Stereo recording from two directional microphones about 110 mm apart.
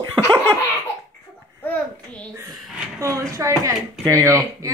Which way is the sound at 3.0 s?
30° right (ahead or behind).